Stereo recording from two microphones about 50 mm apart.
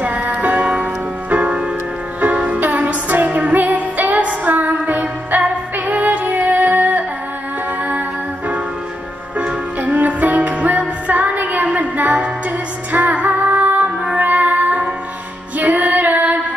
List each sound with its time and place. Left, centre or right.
0.0 s music: right
2.1 s music: right
9.8 s music: right
12.9 s female singing: right
14.1 s music: right